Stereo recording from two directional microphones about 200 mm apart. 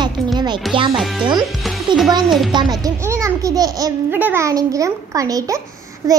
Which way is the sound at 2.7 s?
15° right (ahead or behind).